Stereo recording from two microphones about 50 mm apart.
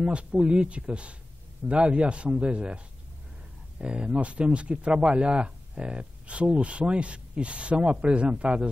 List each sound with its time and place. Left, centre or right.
0.0 s speech: right
3.8 s speech: right